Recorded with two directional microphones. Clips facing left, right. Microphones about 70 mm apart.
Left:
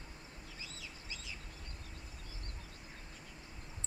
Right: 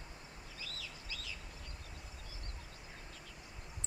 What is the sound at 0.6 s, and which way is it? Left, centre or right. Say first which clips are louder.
Bird: right 3 dB; left.